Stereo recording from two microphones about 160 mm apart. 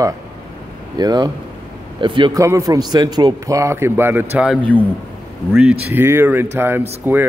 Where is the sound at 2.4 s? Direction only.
20° right (ahead or behind).